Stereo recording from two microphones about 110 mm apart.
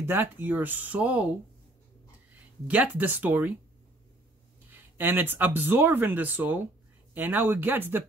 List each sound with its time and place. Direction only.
0.0 s speech: 20° right (ahead or behind)
2.7 s speech: 15° right (ahead or behind)
4.9 s speech: 20° right (ahead or behind)